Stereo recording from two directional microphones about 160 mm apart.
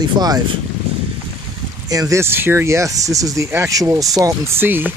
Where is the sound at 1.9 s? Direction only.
20° right (ahead or behind).